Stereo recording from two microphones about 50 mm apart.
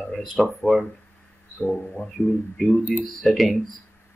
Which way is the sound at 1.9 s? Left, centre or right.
Centre.